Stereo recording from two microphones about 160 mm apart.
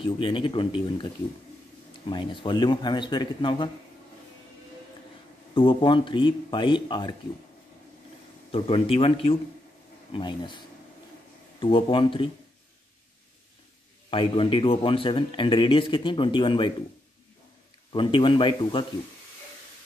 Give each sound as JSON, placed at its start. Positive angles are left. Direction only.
{"t": 0.0, "sound": "a man's voice", "side_deg": 30}
{"t": 2.0, "sound": "a man's voice", "side_deg": 30}
{"t": 5.5, "sound": "a man's voice", "side_deg": 30}
{"t": 8.5, "sound": "a man's voice", "side_deg": 35}
{"t": 11.6, "sound": "a man's voice", "side_deg": 30}
{"t": 14.1, "sound": "a man's voice", "side_deg": 30}
{"t": 17.9, "sound": "a man's voice", "side_deg": 30}